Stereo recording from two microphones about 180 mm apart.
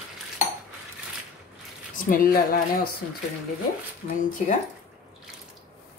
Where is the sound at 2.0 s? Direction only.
50° left (ahead or behind).